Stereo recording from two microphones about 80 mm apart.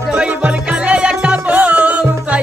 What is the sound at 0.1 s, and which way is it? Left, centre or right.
Music, centre.